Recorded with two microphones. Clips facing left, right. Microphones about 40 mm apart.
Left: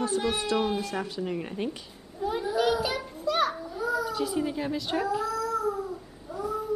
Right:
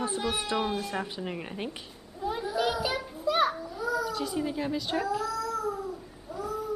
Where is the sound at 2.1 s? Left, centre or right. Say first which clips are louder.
Left 3 dB; centre.